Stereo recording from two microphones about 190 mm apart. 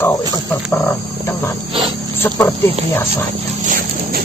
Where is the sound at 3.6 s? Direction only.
45° right (ahead or behind).